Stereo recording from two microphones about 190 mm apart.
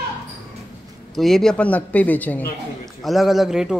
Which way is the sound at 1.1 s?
Centre (ahead or behind).